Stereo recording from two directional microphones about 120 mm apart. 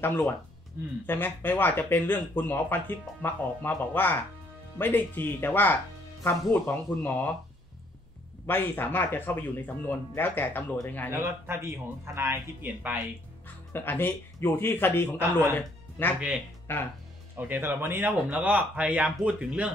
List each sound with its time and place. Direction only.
1.0 s speech: 15° left (ahead or behind)
8.5 s speech: 15° left (ahead or behind)
11.1 s speech: 20° right (ahead or behind)
13.7 s speech: 15° left (ahead or behind)
17.4 s speech: 15° right (ahead or behind)